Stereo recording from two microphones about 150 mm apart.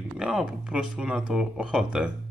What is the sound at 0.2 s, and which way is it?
Speech, 5° right (ahead or behind).